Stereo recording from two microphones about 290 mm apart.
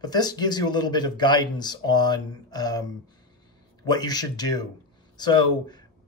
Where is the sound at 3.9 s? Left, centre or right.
Centre.